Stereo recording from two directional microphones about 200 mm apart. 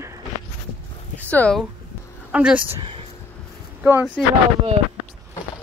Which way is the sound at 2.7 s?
25° right (ahead or behind).